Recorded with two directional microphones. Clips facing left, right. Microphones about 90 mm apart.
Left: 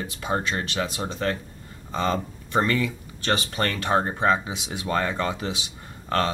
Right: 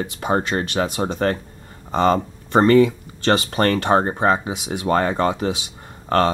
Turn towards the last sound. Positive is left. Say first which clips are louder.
# right 6 dB
turn(degrees=-40)  # may be behind; listen again after turning